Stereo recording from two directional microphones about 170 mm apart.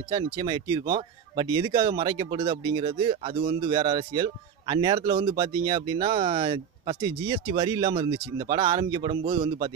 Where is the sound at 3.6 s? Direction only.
25° right (ahead or behind).